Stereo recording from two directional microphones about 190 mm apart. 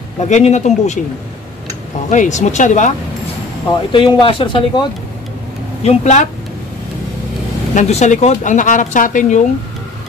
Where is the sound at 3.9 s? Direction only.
25° left (ahead or behind).